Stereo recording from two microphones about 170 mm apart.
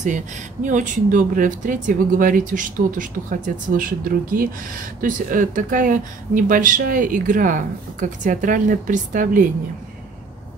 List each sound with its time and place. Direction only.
0.7 s speech: 50° right (ahead or behind)